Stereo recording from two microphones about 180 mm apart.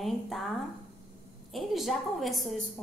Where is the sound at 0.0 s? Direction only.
Centre (ahead or behind).